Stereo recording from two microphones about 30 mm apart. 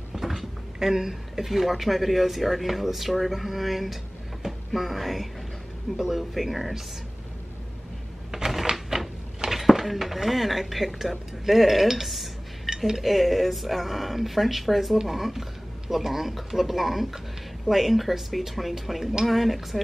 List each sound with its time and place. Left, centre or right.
0.1 s a sound: centre
0.7 s speech: centre
4.5 s music: centre
5.9 s speech: centre
6.3 s speech: centre
8.3 s typewriter: right
9.5 s speech: centre